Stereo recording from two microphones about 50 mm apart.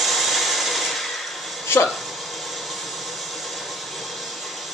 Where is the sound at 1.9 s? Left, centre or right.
Centre.